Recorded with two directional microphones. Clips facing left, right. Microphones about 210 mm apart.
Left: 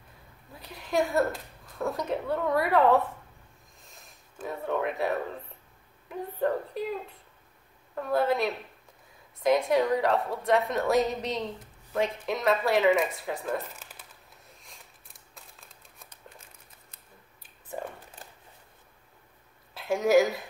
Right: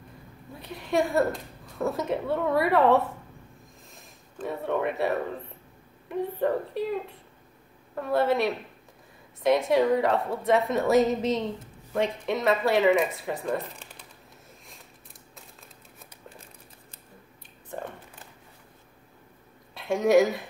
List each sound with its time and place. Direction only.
0.5 s speech: centre (ahead or behind)
4.4 s speech: centre (ahead or behind)
15.3 s crumpling: centre (ahead or behind)
17.7 s a sound: 5° left (ahead or behind)
19.7 s speech: centre (ahead or behind)